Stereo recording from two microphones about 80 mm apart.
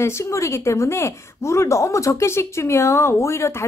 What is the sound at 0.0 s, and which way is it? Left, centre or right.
Speech, left.